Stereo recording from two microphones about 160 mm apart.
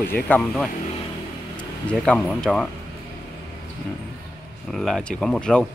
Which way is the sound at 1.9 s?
5° left (ahead or behind).